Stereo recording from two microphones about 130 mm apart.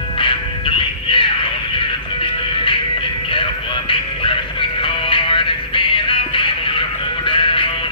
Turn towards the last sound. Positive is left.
turn(degrees=40)  # may be behind; listen again after turning